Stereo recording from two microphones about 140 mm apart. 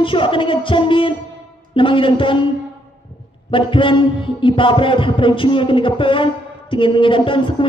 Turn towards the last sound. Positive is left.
turn(degrees=40)  # may be behind; listen again after turning